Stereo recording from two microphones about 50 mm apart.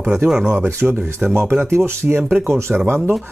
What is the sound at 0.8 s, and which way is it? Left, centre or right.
Speech, centre.